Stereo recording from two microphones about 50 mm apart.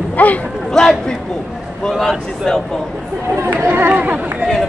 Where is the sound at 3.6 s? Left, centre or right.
Right.